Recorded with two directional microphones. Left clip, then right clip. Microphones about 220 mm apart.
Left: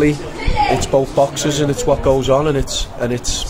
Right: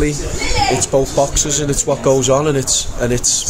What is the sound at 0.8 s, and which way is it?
A man's voice, 5° right (ahead or behind).